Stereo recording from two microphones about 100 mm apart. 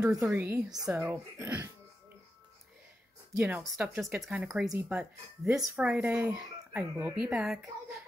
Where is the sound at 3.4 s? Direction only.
10° right (ahead or behind).